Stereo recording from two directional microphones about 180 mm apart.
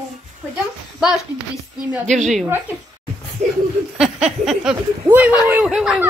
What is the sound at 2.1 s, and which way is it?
Speech, centre (ahead or behind).